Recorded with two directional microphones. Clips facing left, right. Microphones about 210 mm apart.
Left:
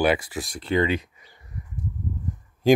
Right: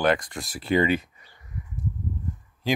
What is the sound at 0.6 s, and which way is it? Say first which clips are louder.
Speech: right 1 dB; 10° right (ahead or behind).